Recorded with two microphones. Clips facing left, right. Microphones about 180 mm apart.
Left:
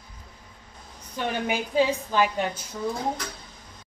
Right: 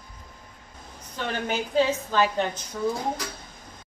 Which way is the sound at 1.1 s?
10° left (ahead or behind).